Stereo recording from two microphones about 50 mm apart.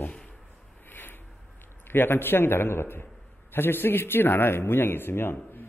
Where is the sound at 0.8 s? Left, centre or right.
Left.